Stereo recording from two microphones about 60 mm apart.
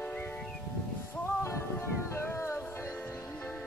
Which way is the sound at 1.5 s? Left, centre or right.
Left.